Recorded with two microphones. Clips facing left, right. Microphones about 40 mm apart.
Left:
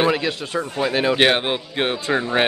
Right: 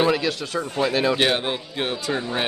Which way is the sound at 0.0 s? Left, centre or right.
Left.